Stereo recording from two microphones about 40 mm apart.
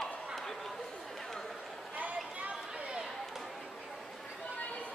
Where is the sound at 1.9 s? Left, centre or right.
Right.